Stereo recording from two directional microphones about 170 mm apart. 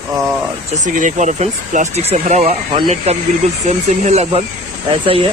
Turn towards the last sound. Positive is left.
turn(degrees=-30)  # may be behind; listen again after turning